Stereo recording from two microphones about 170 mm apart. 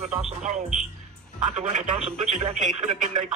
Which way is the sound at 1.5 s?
40° right (ahead or behind).